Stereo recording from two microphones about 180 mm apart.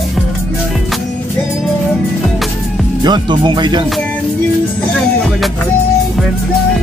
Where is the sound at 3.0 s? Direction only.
25° right (ahead or behind).